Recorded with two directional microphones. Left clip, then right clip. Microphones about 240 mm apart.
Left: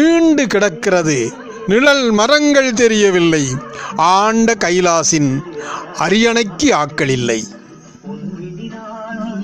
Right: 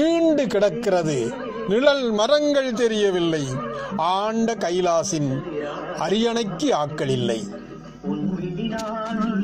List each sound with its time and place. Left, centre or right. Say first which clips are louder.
0.0 s a man's voice: left 7 dB; left